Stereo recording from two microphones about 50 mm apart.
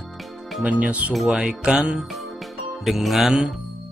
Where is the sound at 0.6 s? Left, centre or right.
Right.